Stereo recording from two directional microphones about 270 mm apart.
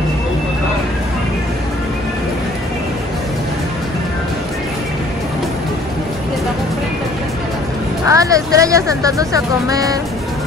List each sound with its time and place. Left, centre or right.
8.0 s speech: centre